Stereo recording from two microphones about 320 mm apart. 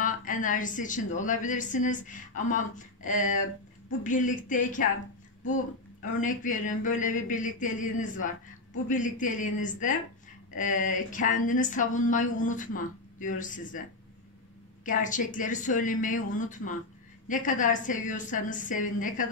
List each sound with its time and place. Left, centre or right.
0.0 s a woman's voice: left
6.2 s a woman's voice: left
14.9 s a woman's voice: left